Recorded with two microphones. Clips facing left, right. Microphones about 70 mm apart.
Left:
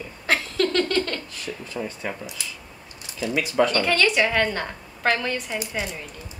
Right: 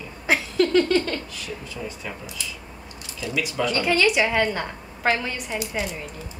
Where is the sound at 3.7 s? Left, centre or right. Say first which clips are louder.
Even; centre.